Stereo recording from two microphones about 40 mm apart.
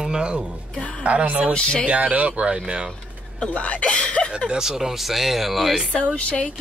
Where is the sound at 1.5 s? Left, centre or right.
Left.